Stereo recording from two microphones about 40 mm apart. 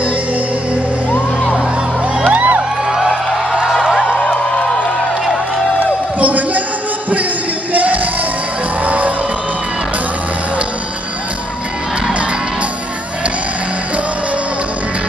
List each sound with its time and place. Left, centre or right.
2.2 s music: right
2.9 s music: centre
4.0 s music: left
6.1 s a sound: right
7.7 s music: right